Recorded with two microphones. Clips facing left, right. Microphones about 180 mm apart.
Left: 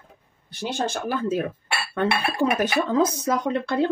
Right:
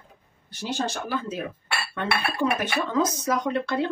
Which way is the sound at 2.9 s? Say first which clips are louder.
Left 3 dB; 25° left (ahead or behind).